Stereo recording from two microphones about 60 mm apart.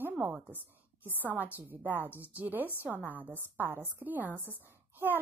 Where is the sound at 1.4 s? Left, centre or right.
Right.